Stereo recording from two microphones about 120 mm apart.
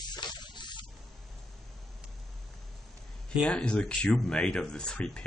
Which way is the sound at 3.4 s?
10° left (ahead or behind).